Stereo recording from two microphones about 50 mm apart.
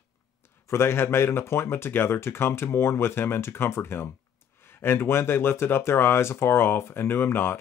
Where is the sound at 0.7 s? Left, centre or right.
Left.